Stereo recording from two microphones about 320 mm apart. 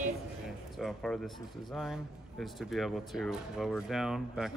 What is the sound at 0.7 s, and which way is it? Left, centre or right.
Speech, centre.